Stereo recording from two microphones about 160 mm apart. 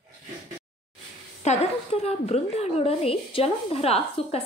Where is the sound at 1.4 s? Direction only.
40° left (ahead or behind).